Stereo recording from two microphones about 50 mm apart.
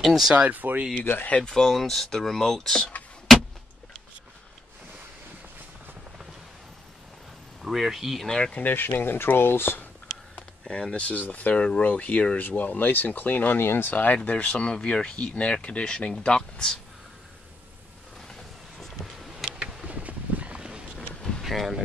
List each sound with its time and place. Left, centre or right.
0.0 s speech: centre
0.5 s speech: right
1.0 s speech: left
1.3 s speech: centre
1.7 s speech: centre
7.6 s speech: centre
8.3 s speech: centre
8.6 s speech: left
10.7 s speech: left
18.3 s vehicle: centre
19.2 s a sound: centre
19.6 s a sound: right
21.4 s speech: centre